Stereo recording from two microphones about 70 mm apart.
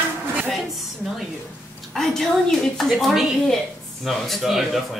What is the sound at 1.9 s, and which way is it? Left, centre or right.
A woman's voice, centre.